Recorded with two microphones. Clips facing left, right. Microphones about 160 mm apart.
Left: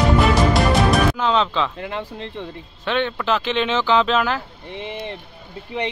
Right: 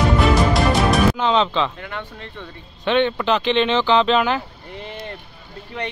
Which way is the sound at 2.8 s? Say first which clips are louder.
Right 3 dB; centre (ahead or behind).